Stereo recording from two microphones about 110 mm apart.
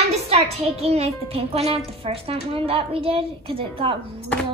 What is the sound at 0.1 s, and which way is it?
A child's voice, 70° right (ahead or behind).